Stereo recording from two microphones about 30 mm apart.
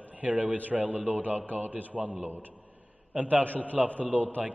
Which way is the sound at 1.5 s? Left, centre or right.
Right.